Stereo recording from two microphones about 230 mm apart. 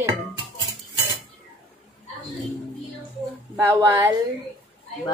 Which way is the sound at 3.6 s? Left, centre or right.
Centre.